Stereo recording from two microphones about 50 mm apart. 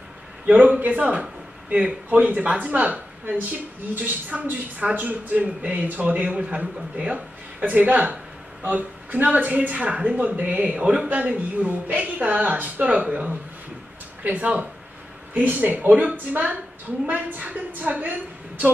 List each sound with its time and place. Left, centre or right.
0.5 s a woman's voice: right